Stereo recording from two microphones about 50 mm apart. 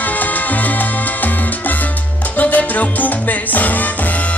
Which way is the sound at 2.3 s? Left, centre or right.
Left.